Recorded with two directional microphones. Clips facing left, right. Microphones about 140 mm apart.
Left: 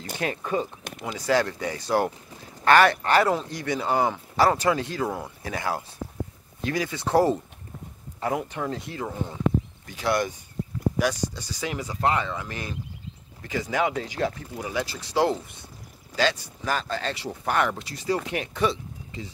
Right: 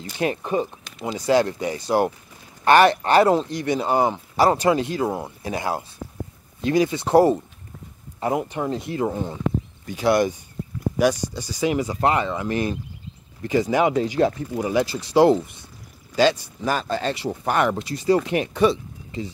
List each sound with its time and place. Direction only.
0.2 s speech: 20° right (ahead or behind)